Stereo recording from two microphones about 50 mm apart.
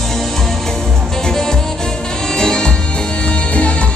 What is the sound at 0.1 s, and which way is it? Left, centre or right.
Music, centre.